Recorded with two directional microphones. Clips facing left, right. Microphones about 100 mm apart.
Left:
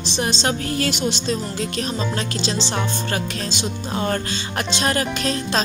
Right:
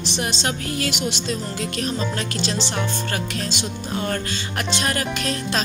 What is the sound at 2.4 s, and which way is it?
Music, 25° left (ahead or behind).